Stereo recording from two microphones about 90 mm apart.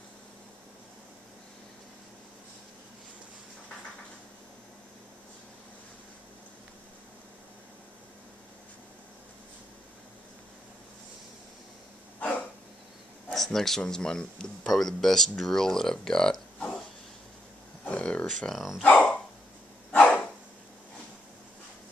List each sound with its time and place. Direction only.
13.3 s speech: 5° left (ahead or behind)
17.8 s a sound: 10° left (ahead or behind)
18.8 s dog: 15° left (ahead or behind)